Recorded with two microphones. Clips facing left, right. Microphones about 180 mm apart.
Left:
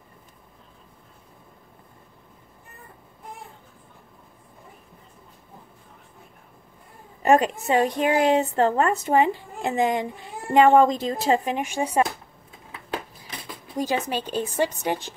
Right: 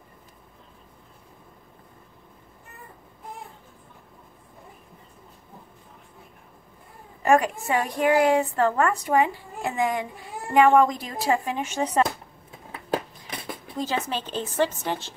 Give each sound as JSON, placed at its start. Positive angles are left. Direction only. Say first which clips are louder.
{"t": 7.2, "sound": "a woman's voice", "louder": "left 2 dB", "side_deg": 20}
{"t": 13.7, "sound": "a woman's voice", "louder": "left 3 dB", "side_deg": 15}